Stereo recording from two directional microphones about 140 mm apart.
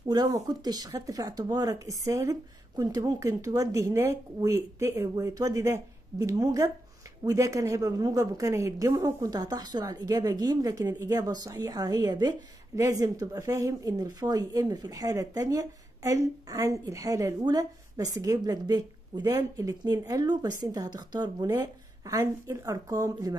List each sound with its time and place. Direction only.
0.1 s a woman's voice: 25° right (ahead or behind)